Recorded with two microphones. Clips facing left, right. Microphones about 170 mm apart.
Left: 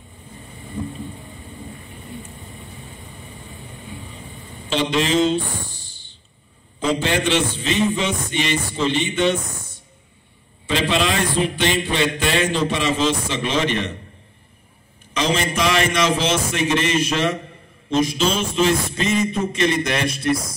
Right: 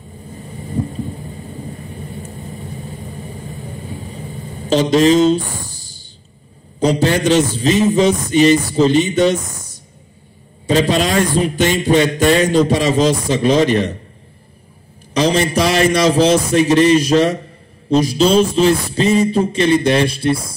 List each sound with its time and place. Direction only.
2.2 s vehicle: 40° right (ahead or behind)
6.8 s a man's voice: 40° right (ahead or behind)
15.1 s a man's voice: 35° right (ahead or behind)